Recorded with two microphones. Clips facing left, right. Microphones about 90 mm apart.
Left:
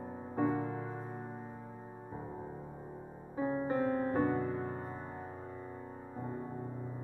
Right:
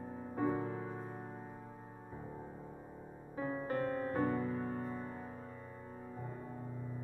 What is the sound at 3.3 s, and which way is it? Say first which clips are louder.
Music: left 4 dB; 20° left (ahead or behind).